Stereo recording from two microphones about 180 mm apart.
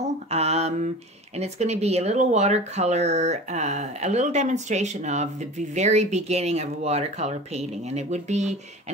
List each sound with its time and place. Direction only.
0.0 s mantra: 35° right (ahead or behind)
1.3 s speech: 35° right (ahead or behind)